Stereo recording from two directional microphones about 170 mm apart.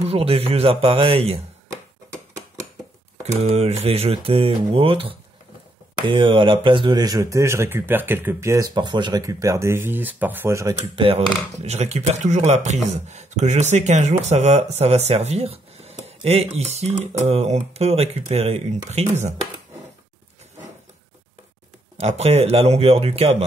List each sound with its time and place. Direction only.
0.0 s speech: 35° right (ahead or behind)
3.5 s speech: 40° right (ahead or behind); by 10.8 s 15° right (ahead or behind)
11.0 s speech: 35° right (ahead or behind)
16.1 s a sound: 35° right (ahead or behind)
16.5 s speech: 40° right (ahead or behind)
21.9 s speech: 35° right (ahead or behind)